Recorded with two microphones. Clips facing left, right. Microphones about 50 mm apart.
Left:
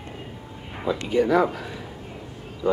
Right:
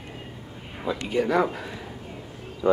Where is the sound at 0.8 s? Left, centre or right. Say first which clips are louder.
Left 3 dB; centre.